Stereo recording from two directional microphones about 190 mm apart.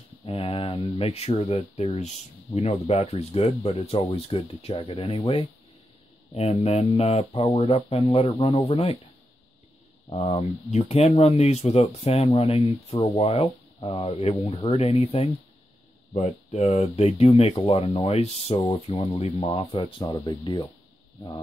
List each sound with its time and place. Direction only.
0.2 s speech: 30° left (ahead or behind)
10.0 s speech: 30° left (ahead or behind)